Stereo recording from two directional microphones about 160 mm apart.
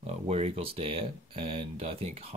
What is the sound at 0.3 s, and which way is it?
Speech, 40° right (ahead or behind).